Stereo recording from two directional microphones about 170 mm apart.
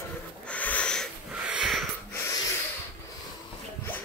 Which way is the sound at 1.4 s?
5° right (ahead or behind).